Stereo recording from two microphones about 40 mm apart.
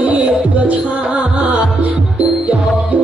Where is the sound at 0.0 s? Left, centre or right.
Right.